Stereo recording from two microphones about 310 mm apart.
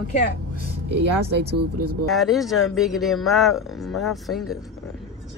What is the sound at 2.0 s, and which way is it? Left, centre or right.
Speech, centre.